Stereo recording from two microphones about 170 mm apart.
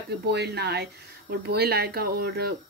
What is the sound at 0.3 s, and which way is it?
Speech, 75° right (ahead or behind).